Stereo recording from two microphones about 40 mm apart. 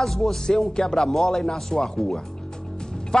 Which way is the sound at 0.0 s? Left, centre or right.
Centre.